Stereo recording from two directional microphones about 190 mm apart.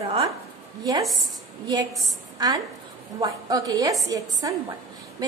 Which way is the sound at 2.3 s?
20° right (ahead or behind).